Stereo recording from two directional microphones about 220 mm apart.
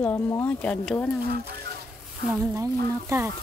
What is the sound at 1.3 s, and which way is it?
Speech, 45° right (ahead or behind).